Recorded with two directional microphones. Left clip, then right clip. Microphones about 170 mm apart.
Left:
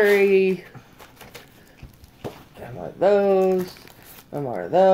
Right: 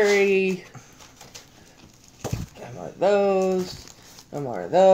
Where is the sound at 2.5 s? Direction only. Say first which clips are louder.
Left 2 dB; centre (ahead or behind).